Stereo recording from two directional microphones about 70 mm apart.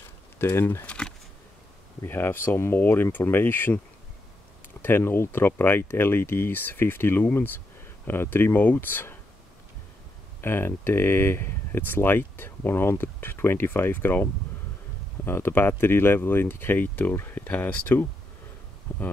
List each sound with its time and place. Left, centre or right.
0.4 s speech: left
0.8 s speech: centre
2.0 s speech: left
4.8 s speech: left
10.4 s speech: left